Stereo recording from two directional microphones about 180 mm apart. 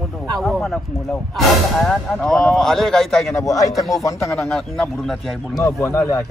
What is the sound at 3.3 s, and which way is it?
Speech, 20° left (ahead or behind).